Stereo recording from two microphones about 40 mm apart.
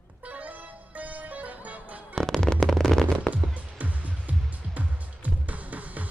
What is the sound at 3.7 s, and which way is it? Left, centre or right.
Music, right.